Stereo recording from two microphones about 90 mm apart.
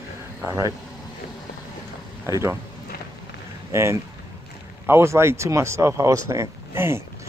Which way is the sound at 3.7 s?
30° right (ahead or behind).